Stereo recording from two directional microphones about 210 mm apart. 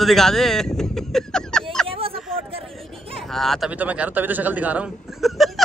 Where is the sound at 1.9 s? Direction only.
25° right (ahead or behind).